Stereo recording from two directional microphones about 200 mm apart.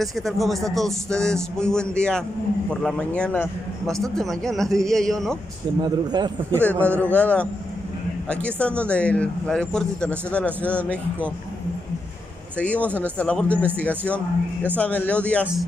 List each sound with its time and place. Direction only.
0.0 s speech: centre (ahead or behind)
5.8 s speech: 20° right (ahead or behind)
6.5 s speech: 10° left (ahead or behind)
12.5 s speech: 5° left (ahead or behind)